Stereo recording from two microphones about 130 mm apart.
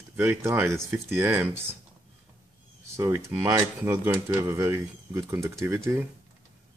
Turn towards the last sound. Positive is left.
turn(degrees=-20)  # may be behind; listen again after turning